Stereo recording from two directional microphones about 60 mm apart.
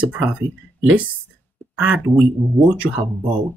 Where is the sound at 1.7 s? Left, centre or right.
Right.